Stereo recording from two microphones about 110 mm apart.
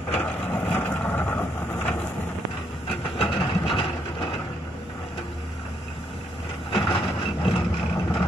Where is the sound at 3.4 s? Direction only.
50° left (ahead or behind).